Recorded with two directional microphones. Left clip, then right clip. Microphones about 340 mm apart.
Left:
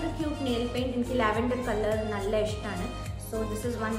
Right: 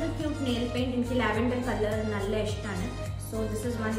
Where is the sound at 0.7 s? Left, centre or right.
Centre.